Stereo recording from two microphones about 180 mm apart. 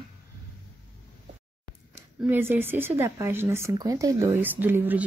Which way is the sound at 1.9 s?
10° right (ahead or behind).